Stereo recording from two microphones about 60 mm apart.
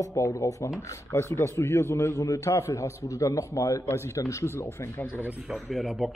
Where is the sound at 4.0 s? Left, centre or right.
Left.